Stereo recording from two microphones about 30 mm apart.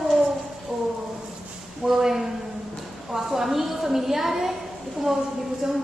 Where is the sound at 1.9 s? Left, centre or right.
Centre.